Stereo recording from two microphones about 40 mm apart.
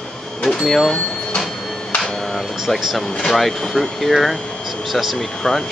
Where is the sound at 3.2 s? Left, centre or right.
Centre.